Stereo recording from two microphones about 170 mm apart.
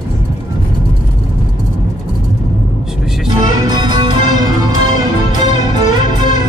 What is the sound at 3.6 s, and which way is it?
Music, 25° right (ahead or behind).